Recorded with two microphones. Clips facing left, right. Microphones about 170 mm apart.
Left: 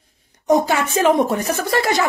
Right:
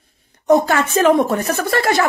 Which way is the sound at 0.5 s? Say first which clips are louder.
Right 2 dB; 15° left (ahead or behind).